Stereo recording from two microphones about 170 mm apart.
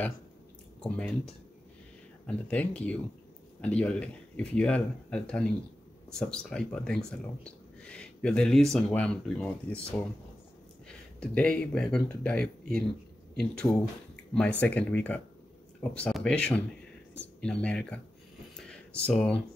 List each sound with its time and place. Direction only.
0.7 s speech: 10° left (ahead or behind)
11.1 s speech: 5° left (ahead or behind)